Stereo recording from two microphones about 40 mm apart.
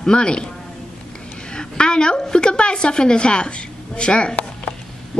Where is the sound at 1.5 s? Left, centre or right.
Left.